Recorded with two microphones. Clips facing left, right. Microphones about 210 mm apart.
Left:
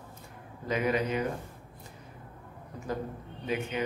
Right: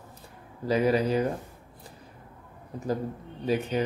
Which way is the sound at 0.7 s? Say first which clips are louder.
Right 5 dB; 35° right (ahead or behind).